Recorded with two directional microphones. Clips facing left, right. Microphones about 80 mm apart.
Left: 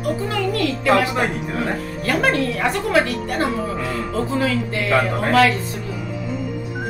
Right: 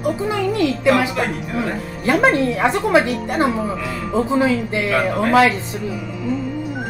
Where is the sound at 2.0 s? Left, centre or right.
Right.